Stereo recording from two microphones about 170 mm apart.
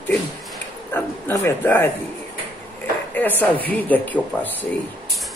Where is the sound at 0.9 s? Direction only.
10° left (ahead or behind).